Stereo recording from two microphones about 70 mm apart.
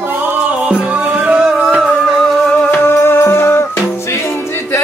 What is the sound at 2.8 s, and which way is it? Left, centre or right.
Music, left.